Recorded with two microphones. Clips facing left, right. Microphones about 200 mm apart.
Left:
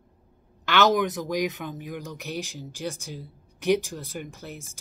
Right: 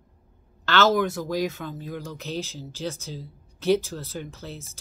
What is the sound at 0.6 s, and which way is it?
A woman's voice, 15° left (ahead or behind).